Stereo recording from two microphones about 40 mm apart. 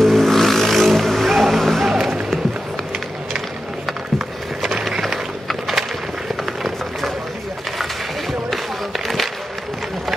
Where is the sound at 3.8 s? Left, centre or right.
Centre.